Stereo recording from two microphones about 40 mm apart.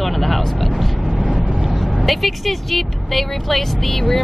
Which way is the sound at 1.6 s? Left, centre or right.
Centre.